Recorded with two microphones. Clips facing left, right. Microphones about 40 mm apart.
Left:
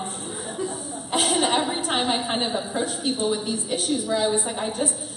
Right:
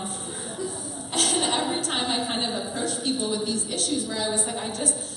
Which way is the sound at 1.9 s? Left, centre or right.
Left.